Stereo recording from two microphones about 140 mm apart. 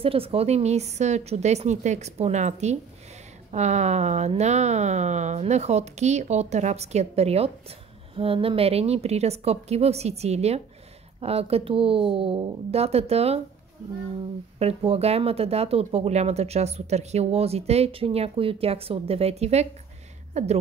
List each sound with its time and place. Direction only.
0.0 s speech: 40° right (ahead or behind)
14.6 s speech: 45° right (ahead or behind)